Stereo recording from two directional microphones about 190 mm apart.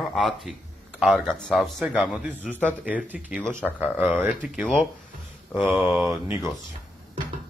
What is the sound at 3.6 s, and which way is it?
Speech, 5° left (ahead or behind).